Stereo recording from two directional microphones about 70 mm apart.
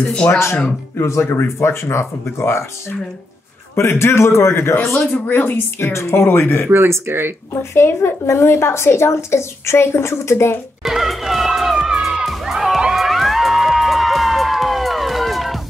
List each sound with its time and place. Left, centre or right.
0.3 s a woman's voice: left
3.7 s a woman's voice: left
5.9 s a woman's voice: left
6.7 s speech: right
7.7 s a woman's voice: left
10.8 s music: centre